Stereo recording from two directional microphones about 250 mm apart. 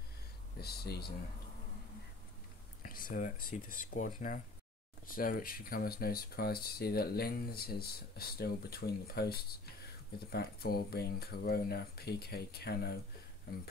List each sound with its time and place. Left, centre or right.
0.6 s speech: left
2.8 s speech: left